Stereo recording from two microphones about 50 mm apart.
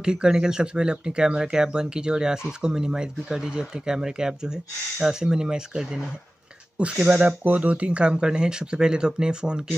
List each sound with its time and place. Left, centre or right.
0.0 s speech: centre